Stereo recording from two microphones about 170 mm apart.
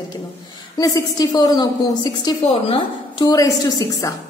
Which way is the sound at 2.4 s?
35° left (ahead or behind).